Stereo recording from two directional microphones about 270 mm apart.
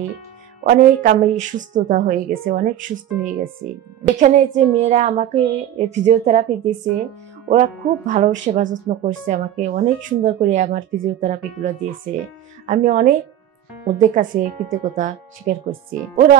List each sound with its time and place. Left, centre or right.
0.7 s speech: right
7.4 s speech: right